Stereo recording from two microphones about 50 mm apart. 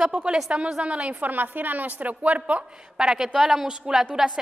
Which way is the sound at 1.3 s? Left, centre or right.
Right.